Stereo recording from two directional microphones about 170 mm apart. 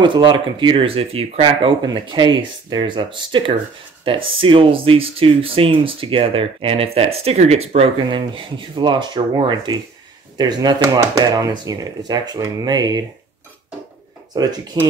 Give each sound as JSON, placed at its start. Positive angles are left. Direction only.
{"t": 0.0, "sound": "speech", "side_deg": -30}
{"t": 14.3, "sound": "speech", "side_deg": -25}